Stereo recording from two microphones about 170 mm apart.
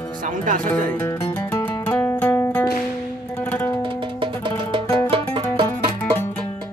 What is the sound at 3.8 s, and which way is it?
Music, 30° right (ahead or behind).